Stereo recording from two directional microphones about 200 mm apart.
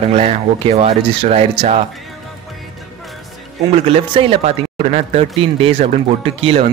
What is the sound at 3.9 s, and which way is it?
Speech, 30° right (ahead or behind).